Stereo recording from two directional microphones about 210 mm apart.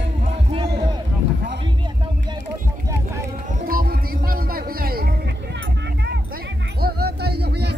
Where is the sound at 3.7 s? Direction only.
45° right (ahead or behind).